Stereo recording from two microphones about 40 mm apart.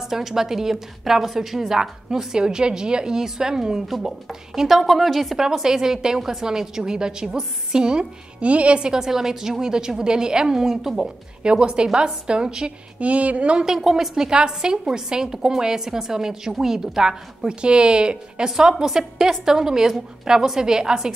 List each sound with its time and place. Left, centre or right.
0.0 s a woman's voice: centre
5.4 s a woman's voice: centre
8.4 s a woman's voice: right
10.6 s a woman's voice: centre
11.4 s a woman's voice: right
13.0 s speech: right
13.7 s a woman's voice: centre